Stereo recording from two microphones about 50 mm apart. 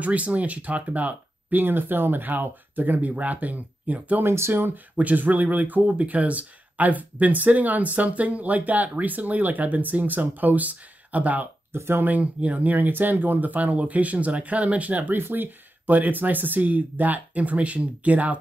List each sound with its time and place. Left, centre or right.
0.0 s speech: right
4.2 s speech: right
4.9 s speech: right
11.7 s speech: right
12.1 s speech: right